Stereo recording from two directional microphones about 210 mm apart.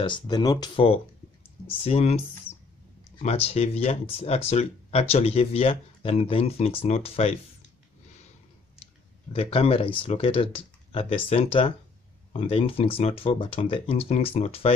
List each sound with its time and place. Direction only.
0.0 s speech: 20° left (ahead or behind)
9.3 s speech: 25° left (ahead or behind)